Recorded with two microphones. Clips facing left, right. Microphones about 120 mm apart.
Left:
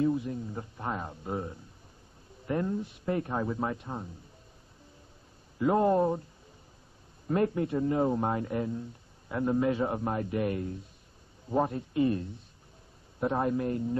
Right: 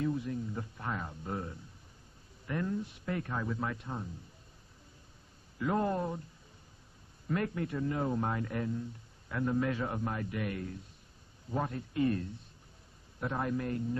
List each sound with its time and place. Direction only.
0.0 s a man's voice: 25° left (ahead or behind)
5.6 s a man's voice: 30° left (ahead or behind)
7.2 s a man's voice: 30° left (ahead or behind)